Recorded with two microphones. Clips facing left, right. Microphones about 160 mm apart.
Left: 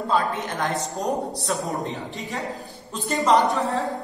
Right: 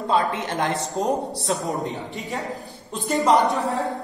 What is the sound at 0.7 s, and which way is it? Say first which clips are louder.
Speech: right 2 dB; centre (ahead or behind).